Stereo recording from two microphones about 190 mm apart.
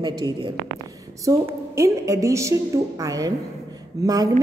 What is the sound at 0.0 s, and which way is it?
A woman's voice, 20° right (ahead or behind).